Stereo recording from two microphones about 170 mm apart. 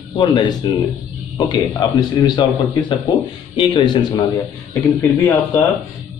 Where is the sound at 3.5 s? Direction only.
25° left (ahead or behind).